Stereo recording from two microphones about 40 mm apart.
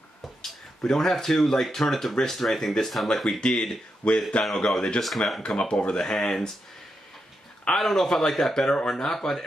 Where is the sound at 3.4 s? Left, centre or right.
Centre.